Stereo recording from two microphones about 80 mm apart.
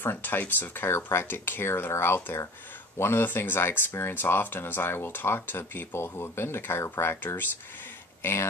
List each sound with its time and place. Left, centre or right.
0.0 s speech: left